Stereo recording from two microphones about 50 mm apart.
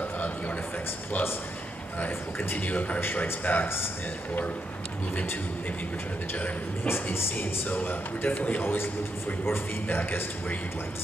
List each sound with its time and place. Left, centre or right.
2.0 s a man's voice: left
3.0 s a man's voice: left
3.6 s speech: left
6.3 s speech: left
6.9 s speech: left
7.3 s speech: left
8.4 s a man's voice: left
8.6 s speech: left